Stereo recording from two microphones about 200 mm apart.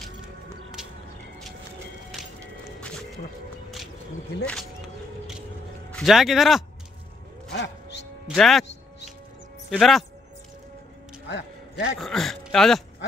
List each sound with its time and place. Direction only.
0.8 s a sound: 5° right (ahead or behind)
5.9 s speech: centre (ahead or behind)
7.5 s music: 65° left (ahead or behind)
8.3 s music: centre (ahead or behind)
9.7 s speech: centre (ahead or behind)
11.2 s music: 60° left (ahead or behind)
12.0 s speech: centre (ahead or behind)